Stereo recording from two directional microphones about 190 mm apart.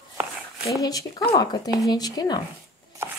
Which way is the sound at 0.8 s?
20° left (ahead or behind).